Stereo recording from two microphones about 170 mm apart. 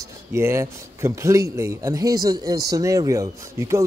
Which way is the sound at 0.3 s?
15° right (ahead or behind).